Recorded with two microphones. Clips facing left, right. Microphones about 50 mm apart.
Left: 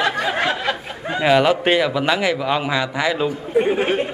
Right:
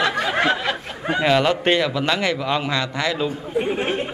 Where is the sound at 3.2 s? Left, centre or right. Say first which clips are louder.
Left 5 dB; left.